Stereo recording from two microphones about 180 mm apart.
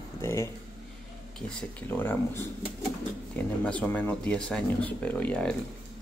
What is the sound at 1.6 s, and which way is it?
Speech, 10° left (ahead or behind).